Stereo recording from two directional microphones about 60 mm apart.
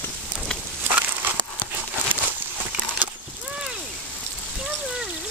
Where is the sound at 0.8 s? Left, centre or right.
Right.